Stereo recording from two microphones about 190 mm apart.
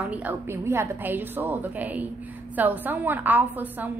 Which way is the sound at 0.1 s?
10° right (ahead or behind).